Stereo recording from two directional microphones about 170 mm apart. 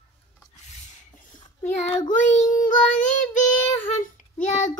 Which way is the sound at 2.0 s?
50° left (ahead or behind).